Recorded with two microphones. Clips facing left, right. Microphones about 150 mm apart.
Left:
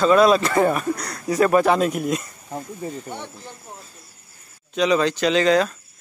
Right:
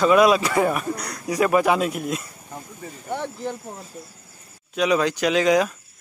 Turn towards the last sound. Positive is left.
turn(degrees=-10)  # may be behind; listen again after turning